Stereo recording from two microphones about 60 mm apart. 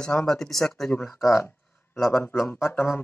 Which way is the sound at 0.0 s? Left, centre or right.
Centre.